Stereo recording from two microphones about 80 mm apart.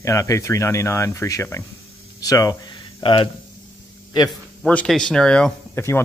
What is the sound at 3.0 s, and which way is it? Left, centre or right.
Speech, left.